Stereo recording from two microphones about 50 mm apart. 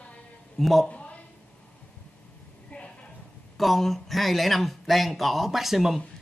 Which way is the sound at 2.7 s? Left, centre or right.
Left.